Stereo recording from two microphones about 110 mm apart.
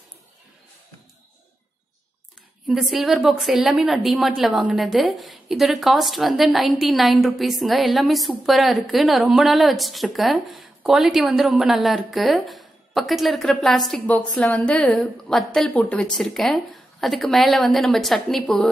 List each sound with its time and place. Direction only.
2.7 s a woman's voice: 5° right (ahead or behind)
14.0 s a woman's voice: 15° left (ahead or behind)